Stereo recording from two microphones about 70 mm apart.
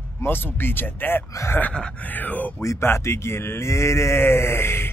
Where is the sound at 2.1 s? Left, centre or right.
Left.